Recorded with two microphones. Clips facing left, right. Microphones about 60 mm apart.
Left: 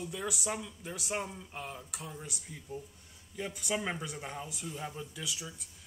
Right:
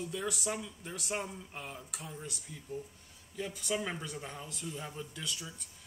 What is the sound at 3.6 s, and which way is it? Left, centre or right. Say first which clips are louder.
Speech: left 1 dB; centre.